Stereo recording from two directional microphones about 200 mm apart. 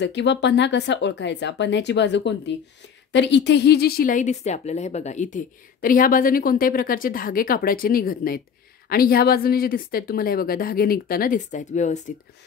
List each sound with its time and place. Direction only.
0.0 s speech: 60° left (ahead or behind); by 12.0 s 35° left (ahead or behind)